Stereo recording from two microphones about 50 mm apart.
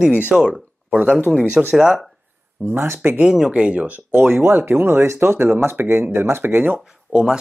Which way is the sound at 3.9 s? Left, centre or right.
Right.